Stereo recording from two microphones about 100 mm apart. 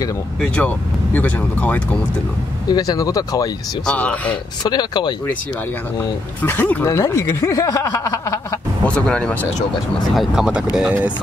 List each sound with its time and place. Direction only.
0.4 s speech: 15° left (ahead or behind)
2.7 s speech: 40° left (ahead or behind)
3.8 s speech: 10° left (ahead or behind)
4.6 s speech: 45° left (ahead or behind)
5.9 s speech: 20° left (ahead or behind)
8.8 s speech: 10° left (ahead or behind)
10.1 s speech: 5° right (ahead or behind)